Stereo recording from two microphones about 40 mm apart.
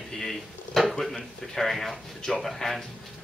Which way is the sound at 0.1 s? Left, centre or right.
Centre.